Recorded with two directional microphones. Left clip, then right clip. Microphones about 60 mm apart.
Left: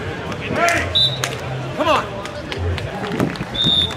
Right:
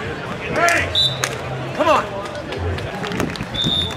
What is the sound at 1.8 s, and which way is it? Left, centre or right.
Music, centre.